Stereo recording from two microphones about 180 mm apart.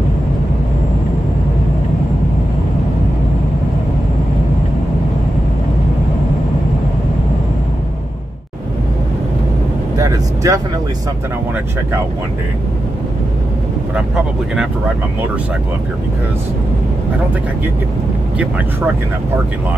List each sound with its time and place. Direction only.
9.9 s vehicle: 20° right (ahead or behind)